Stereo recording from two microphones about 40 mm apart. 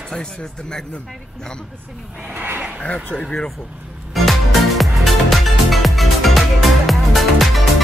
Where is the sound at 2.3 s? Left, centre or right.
Right.